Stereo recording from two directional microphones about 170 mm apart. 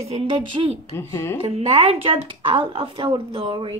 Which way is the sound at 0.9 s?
15° left (ahead or behind).